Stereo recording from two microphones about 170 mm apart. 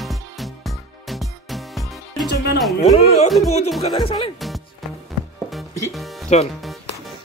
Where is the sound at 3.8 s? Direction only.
35° left (ahead or behind).